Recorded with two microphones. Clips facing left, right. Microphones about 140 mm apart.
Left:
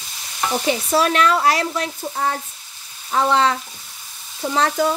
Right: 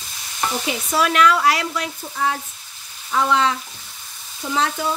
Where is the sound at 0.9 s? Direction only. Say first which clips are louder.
Right 1 dB; 30° left (ahead or behind).